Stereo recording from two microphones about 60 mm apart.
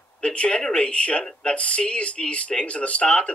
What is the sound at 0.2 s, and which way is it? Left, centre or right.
Speech, centre.